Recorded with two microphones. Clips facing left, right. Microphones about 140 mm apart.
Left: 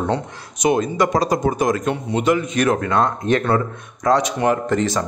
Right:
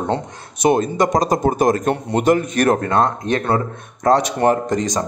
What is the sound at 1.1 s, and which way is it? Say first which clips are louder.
Speech: right 2 dB; 45° right (ahead or behind).